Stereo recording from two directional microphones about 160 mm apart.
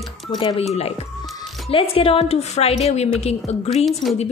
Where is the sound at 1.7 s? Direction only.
35° left (ahead or behind).